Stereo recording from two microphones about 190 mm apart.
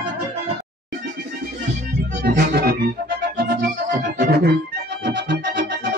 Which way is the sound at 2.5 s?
55° right (ahead or behind).